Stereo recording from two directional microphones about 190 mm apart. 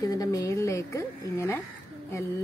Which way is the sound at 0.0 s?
20° left (ahead or behind).